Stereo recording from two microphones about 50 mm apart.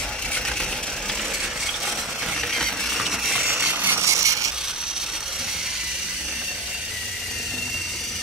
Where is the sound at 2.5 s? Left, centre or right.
Centre.